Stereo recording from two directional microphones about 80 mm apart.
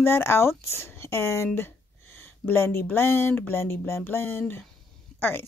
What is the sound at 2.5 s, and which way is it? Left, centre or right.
A woman's voice, left.